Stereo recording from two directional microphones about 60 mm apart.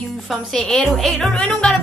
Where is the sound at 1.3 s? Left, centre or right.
Centre.